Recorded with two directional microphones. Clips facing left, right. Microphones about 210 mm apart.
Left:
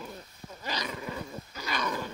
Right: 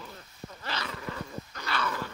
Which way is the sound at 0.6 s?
15° left (ahead or behind).